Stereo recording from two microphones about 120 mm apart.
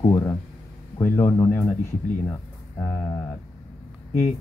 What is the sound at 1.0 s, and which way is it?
Speech, 25° left (ahead or behind).